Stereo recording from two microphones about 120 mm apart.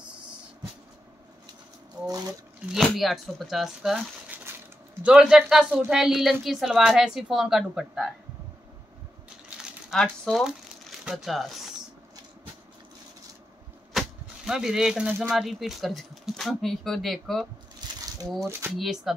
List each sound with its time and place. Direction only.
2.0 s speech: 30° right (ahead or behind)
2.7 s speech: centre (ahead or behind)
4.5 s a sound: 20° right (ahead or behind)
5.0 s speech: 5° right (ahead or behind)
9.8 s speech: 5° left (ahead or behind)
13.9 s speech: 5° right (ahead or behind)
17.8 s a sound: 35° right (ahead or behind)
18.8 s speech: centre (ahead or behind)